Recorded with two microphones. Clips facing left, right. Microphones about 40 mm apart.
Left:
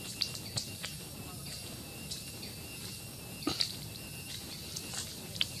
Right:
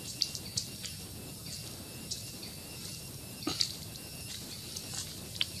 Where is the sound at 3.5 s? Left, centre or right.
Centre.